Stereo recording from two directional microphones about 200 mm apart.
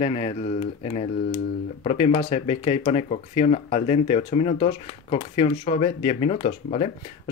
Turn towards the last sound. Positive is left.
turn(degrees=35)  # may be behind; listen again after turning